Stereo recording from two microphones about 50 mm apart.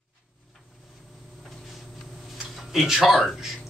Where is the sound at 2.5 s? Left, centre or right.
Centre.